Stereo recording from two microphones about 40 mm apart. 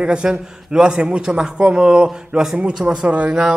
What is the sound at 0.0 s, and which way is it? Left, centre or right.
Speech, right.